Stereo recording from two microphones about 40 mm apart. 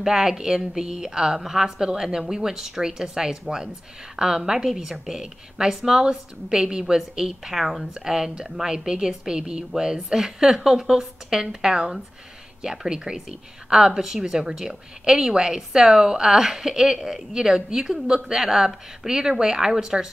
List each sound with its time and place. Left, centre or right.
0.0 s a woman's voice: centre
7.9 s a woman's voice: centre
12.9 s a woman's voice: centre